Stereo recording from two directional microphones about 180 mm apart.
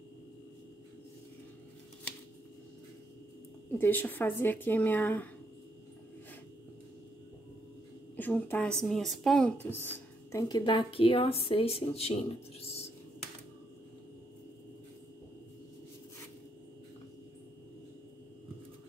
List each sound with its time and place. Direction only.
3.7 s speech: 10° left (ahead or behind)
8.2 s a woman's voice: 10° left (ahead or behind)
10.3 s speech: 25° left (ahead or behind)